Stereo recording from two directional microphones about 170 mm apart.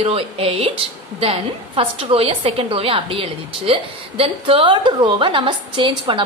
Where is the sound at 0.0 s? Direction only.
35° right (ahead or behind).